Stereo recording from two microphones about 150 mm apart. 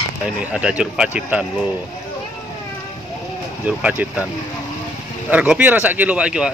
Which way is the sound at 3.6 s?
10° right (ahead or behind).